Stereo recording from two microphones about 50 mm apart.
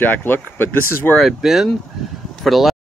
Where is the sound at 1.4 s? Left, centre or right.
Centre.